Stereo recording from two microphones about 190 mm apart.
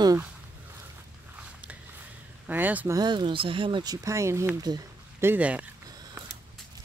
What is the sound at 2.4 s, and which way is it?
Speech, 10° right (ahead or behind).